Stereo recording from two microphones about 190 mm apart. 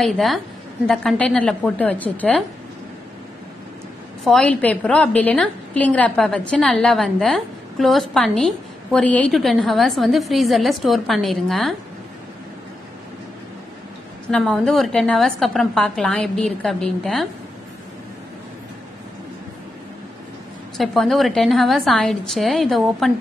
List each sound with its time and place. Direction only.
0.0 s a woman's voice: centre (ahead or behind)
4.2 s a woman's voice: centre (ahead or behind)
14.3 s a woman's voice: 5° left (ahead or behind)
20.7 s a woman's voice: centre (ahead or behind)